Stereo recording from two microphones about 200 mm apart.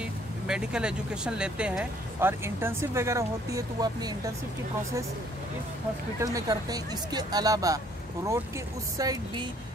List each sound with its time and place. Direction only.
0.0 s speech: 5° right (ahead or behind)
6.1 s speech: 15° right (ahead or behind)
8.9 s a woman's voice: 20° right (ahead or behind)